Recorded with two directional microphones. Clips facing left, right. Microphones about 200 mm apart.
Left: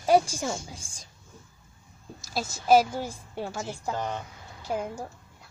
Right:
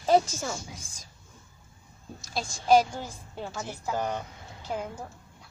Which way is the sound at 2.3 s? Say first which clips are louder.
Left 1 dB; 5° left (ahead or behind).